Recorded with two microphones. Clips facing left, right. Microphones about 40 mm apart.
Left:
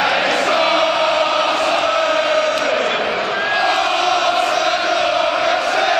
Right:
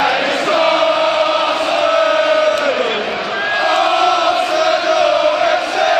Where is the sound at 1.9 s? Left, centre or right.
Centre.